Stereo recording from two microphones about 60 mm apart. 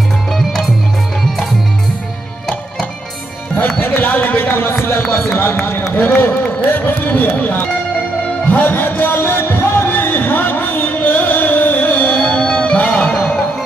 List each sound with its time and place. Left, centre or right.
0.3 s music: centre
3.5 s music: left
5.1 s speech: left
8.5 s music: left
12.2 s music: left